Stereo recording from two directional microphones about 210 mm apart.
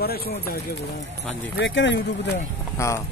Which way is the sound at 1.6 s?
60° left (ahead or behind).